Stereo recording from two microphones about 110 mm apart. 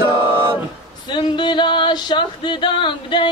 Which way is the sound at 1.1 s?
45° left (ahead or behind).